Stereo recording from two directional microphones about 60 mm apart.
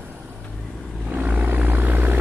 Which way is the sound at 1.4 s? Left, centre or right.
Right.